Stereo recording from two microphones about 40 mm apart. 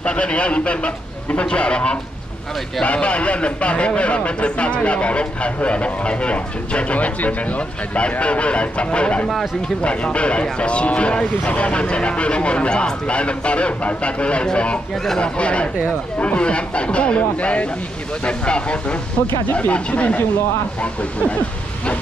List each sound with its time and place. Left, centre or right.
0.0 s a man's voice: left